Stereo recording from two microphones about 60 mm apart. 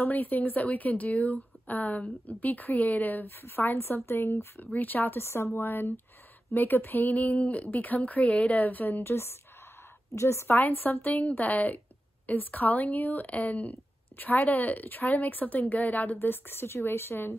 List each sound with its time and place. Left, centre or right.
0.0 s speech: left
4.7 s speech: left
5.2 s a woman's voice: left
10.6 s speech: left
16.2 s a woman's voice: left